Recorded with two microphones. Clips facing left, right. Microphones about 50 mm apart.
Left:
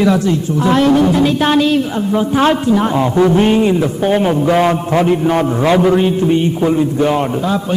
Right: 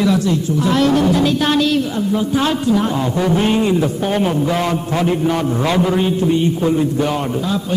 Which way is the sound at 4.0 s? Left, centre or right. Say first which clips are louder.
Left 4 dB; centre.